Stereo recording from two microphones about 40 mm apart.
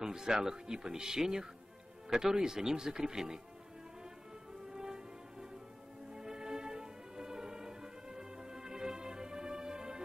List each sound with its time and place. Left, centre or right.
0.0 s speech: centre
4.6 s music: centre